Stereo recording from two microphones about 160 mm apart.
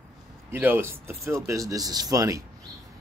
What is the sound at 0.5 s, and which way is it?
Speech, 10° right (ahead or behind).